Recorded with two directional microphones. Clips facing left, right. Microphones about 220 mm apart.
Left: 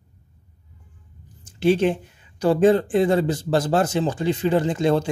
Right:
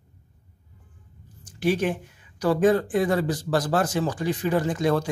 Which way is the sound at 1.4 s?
25° left (ahead or behind).